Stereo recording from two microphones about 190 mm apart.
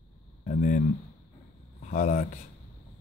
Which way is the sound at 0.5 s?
40° left (ahead or behind).